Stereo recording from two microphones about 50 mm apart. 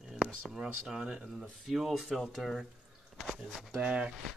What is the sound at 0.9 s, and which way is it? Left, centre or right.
Speech, centre.